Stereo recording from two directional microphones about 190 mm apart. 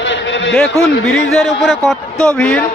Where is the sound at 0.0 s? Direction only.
70° left (ahead or behind).